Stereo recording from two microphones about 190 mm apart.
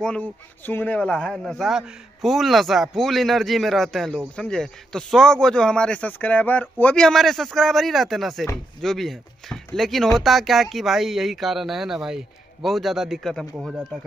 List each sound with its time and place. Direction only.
0.0 s speech: 5° left (ahead or behind)